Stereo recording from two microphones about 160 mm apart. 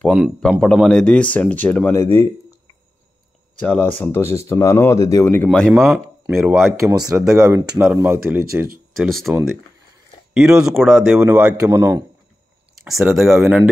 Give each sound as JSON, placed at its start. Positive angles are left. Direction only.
{"t": 0.4, "sound": "speech", "side_deg": 5}
{"t": 3.6, "sound": "speech", "side_deg": 10}
{"t": 5.5, "sound": "speech", "side_deg": 0}
{"t": 5.9, "sound": "a man's voice", "side_deg": -10}
{"t": 8.3, "sound": "speech", "side_deg": -10}
{"t": 8.9, "sound": "speech", "side_deg": 0}
{"t": 10.3, "sound": "speech", "side_deg": 0}
{"t": 11.1, "sound": "a man's voice", "side_deg": -10}
{"t": 12.8, "sound": "speech", "side_deg": 0}